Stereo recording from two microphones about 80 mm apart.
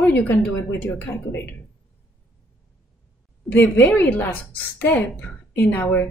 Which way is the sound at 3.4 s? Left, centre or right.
Left.